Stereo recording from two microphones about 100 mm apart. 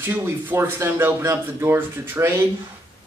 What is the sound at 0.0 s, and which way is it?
Speech, 20° right (ahead or behind).